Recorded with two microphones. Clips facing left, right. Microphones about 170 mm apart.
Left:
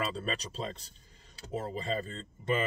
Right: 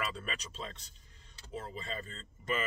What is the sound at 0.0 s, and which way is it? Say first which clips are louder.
Speech: left 5 dB; 30° left (ahead or behind).